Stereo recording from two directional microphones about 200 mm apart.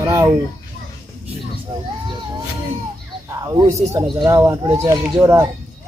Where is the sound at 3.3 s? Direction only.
15° right (ahead or behind).